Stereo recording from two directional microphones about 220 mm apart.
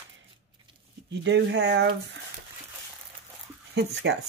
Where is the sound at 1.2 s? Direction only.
55° right (ahead or behind).